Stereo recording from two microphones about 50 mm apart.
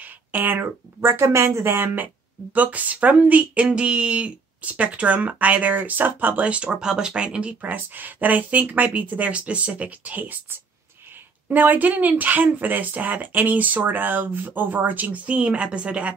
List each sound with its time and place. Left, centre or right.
0.0 s a sound: right
1.0 s speech: right
2.5 s speech: right
6.5 s speech: centre
7.6 s speech: right
11.4 s speech: right
15.2 s speech: right